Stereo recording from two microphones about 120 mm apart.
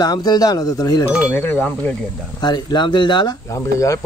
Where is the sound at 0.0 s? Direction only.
30° left (ahead or behind).